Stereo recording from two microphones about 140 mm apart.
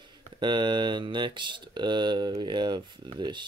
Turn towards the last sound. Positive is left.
turn(degrees=-35)  # may be behind; listen again after turning